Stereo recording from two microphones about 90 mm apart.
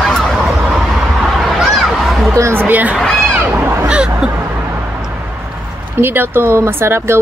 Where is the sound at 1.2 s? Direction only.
Centre (ahead or behind).